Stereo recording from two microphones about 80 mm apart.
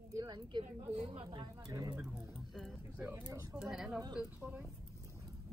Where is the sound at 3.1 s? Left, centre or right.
Right.